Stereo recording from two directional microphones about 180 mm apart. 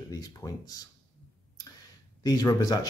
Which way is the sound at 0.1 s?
20° left (ahead or behind).